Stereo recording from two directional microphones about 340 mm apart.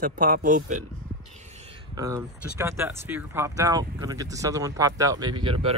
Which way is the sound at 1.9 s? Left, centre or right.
Centre.